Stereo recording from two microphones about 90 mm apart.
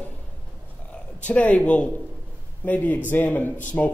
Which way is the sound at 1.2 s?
15° left (ahead or behind).